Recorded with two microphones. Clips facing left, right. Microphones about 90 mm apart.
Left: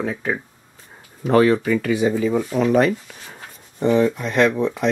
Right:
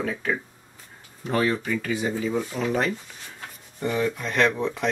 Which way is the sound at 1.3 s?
70° left (ahead or behind).